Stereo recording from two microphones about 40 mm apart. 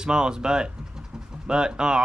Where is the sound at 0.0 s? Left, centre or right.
Centre.